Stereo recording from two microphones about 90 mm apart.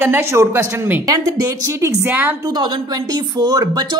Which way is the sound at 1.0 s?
45° right (ahead or behind).